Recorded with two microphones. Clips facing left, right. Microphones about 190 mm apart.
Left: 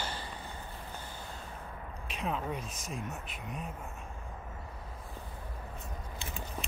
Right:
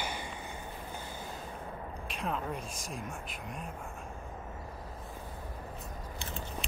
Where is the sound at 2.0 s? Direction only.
Centre (ahead or behind).